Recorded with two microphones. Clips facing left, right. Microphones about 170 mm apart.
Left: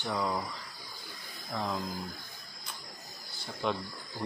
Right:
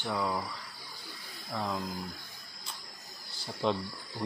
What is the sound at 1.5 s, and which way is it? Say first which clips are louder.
Speech: even; centre (ahead or behind).